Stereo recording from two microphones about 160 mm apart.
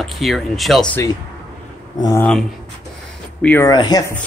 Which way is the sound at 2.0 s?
20° left (ahead or behind).